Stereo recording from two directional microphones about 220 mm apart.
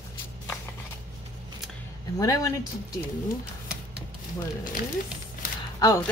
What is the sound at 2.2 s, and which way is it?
Speech, 15° left (ahead or behind).